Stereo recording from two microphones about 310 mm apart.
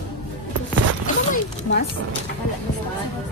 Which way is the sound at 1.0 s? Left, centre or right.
Left.